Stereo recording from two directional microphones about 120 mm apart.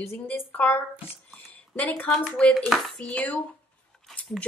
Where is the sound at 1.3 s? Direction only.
15° left (ahead or behind).